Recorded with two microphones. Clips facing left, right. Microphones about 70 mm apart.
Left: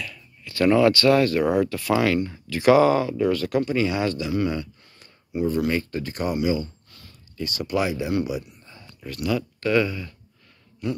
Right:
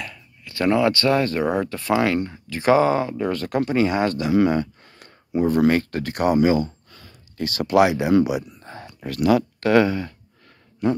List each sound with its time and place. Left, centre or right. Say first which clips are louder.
0.1 s speech: even; right
4.9 s speech: right 5 dB; right
7.3 s speech: right 8 dB; right